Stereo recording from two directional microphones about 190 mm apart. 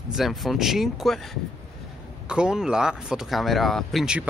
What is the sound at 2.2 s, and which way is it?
Speech, 5° right (ahead or behind).